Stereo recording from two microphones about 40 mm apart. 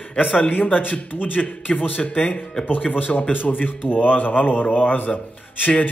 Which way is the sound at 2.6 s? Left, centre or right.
Left.